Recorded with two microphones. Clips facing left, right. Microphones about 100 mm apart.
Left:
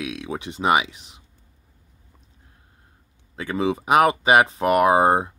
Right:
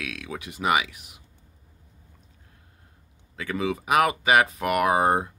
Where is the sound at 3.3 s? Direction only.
30° left (ahead or behind).